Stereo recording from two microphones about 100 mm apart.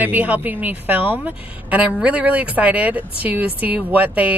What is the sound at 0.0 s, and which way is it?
A woman's voice, 15° right (ahead or behind).